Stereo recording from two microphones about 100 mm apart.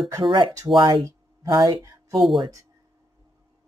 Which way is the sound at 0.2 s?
55° right (ahead or behind).